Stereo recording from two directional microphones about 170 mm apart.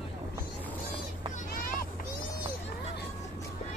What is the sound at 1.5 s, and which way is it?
Vehicle, 55° left (ahead or behind).